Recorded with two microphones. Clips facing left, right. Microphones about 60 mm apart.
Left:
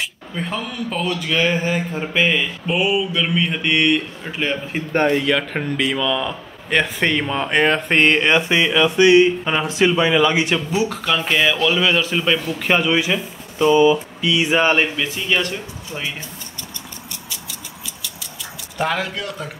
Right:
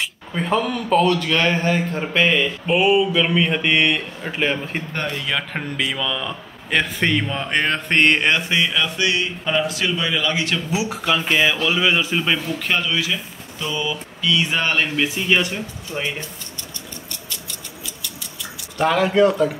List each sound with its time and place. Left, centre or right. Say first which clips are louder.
0.3 s a man's voice: right 7 dB; centre
4.9 s speech: left 12 dB; left
5.2 s a man's voice: left 5 dB; centre
8.3 s speech: left 3 dB; left
10.7 s speech: left 1 dB; centre
12.5 s speech: left 4 dB; centre
14.3 s speech: left 4 dB; centre
15.0 s speech: right 2 dB; centre
15.9 s a man's voice: right 2 dB; centre
18.8 s a man's voice: right 3 dB; centre
19.0 s a man's voice: right 13 dB; right